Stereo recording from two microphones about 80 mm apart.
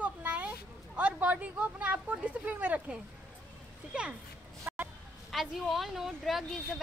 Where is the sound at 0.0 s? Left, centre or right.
Centre.